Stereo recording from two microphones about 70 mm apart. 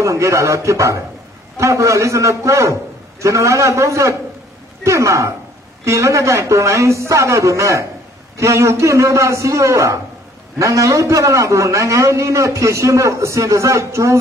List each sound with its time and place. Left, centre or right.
0.0 s a man's voice: right